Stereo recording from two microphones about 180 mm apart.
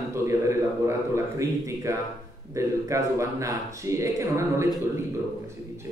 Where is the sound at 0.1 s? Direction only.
15° right (ahead or behind).